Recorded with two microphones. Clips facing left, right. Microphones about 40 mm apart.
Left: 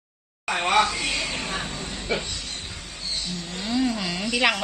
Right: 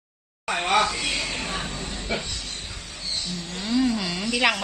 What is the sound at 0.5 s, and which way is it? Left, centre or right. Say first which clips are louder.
Speech: left 1 dB; centre.